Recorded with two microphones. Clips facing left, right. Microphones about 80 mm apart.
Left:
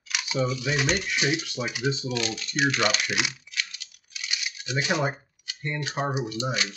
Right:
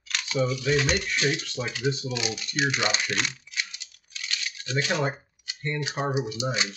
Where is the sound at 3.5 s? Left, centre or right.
Right.